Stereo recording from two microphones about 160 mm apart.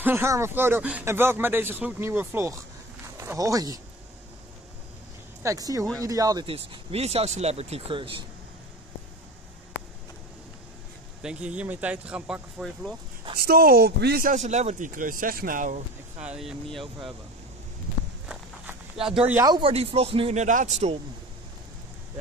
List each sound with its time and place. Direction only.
0.0 s speech: 15° right (ahead or behind)
5.4 s speech: 20° right (ahead or behind)
6.4 s speech: 40° right (ahead or behind)
11.2 s speech: 10° right (ahead or behind)
13.4 s speech: 70° right (ahead or behind)
14.3 s speech: 45° right (ahead or behind)
16.3 s speech: centre (ahead or behind)
19.0 s speech: 5° right (ahead or behind)
19.4 s speech: 25° right (ahead or behind)
19.7 s speech: 40° right (ahead or behind)